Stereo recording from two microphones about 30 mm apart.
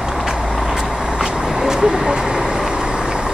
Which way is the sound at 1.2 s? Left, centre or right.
Right.